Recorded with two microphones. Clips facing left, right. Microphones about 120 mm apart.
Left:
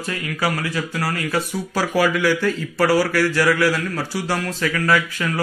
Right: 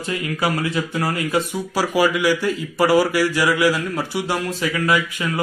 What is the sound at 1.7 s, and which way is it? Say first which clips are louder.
A man's voice: right 1 dB; 10° right (ahead or behind).